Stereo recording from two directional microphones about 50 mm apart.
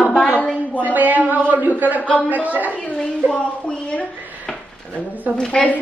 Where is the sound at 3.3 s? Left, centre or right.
Left.